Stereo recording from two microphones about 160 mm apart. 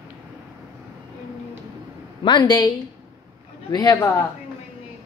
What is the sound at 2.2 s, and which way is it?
Speech, 25° left (ahead or behind).